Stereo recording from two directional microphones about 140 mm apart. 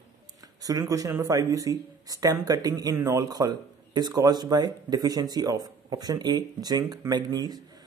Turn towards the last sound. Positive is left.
turn(degrees=-30)  # may be behind; listen again after turning